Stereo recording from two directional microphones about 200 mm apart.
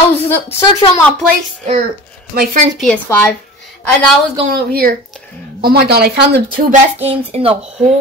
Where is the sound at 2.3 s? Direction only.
50° right (ahead or behind).